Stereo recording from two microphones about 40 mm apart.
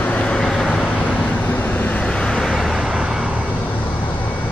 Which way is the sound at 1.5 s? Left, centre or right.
Left.